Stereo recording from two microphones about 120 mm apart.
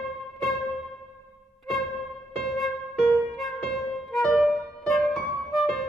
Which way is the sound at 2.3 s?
Centre (ahead or behind).